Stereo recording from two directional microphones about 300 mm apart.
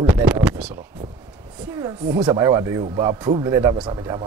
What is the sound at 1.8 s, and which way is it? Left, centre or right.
Speech, centre.